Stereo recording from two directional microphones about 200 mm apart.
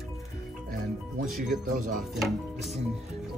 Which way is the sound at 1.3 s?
Centre (ahead or behind).